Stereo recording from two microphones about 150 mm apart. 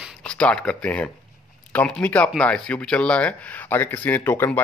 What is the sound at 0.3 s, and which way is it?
Speech, 5° left (ahead or behind).